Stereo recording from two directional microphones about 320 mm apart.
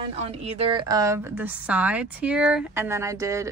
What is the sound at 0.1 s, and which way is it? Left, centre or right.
A woman's voice, centre.